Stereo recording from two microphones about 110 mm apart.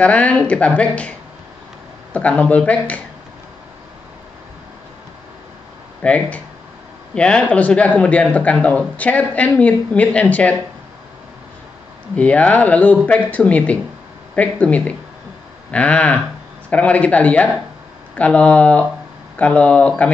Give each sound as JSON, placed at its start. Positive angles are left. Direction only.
{"t": 0.0, "sound": "speech", "side_deg": 10}
{"t": 2.1, "sound": "speech", "side_deg": 10}
{"t": 6.0, "sound": "speech", "side_deg": 10}
{"t": 12.2, "sound": "speech", "side_deg": 10}